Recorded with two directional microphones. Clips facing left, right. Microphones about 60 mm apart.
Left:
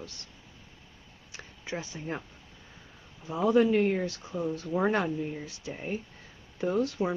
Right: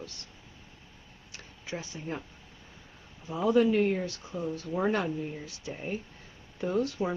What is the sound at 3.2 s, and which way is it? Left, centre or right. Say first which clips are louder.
Speech: left 1 dB; centre.